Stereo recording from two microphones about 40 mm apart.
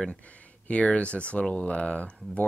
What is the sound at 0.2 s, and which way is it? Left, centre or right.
Speech, left.